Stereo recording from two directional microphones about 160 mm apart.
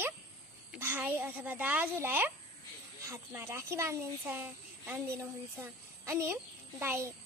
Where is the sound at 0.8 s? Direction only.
10° right (ahead or behind).